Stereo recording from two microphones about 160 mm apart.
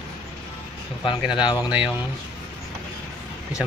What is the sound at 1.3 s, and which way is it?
Speech, 30° left (ahead or behind).